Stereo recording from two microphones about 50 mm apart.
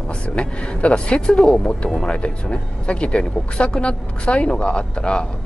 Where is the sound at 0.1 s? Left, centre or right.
Left.